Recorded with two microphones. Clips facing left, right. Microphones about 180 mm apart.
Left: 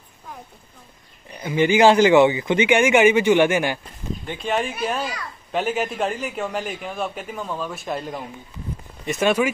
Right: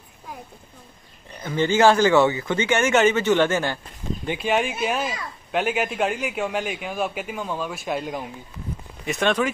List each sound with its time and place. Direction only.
1.4 s a man's voice: 10° left (ahead or behind)
4.4 s a man's voice: 5° right (ahead or behind)